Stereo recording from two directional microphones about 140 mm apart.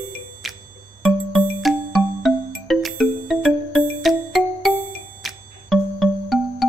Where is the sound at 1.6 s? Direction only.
Centre (ahead or behind).